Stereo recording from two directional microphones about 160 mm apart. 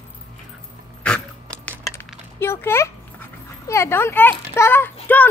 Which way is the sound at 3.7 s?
15° left (ahead or behind).